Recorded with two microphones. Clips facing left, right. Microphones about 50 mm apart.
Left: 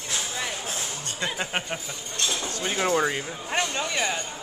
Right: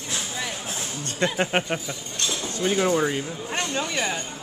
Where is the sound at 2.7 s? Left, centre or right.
Centre.